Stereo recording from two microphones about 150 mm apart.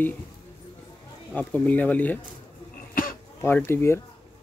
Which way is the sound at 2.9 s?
70° left (ahead or behind).